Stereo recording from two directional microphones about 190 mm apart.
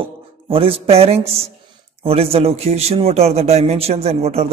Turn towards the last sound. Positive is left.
turn(degrees=-35)  # may be behind; listen again after turning